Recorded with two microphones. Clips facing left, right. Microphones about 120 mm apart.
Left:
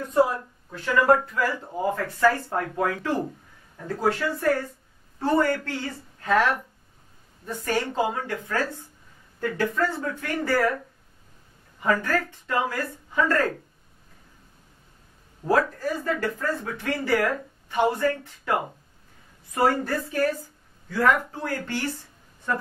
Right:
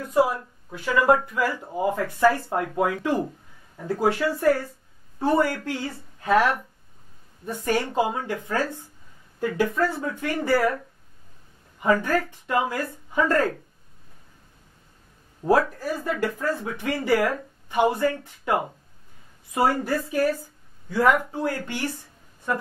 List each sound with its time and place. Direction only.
0.0 s speech: 10° right (ahead or behind)
11.8 s speech: 15° right (ahead or behind)
15.7 s speech: 10° right (ahead or behind)